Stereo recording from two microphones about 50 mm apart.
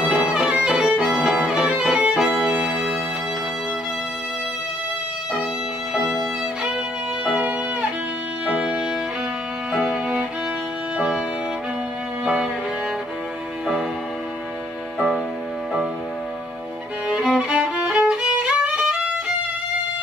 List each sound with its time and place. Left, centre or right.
0.1 s violin: centre
2.4 s music: centre
5.9 s music: centre
7.2 s music: right
17.2 s music: centre
17.5 s music: right
18.3 s violin: centre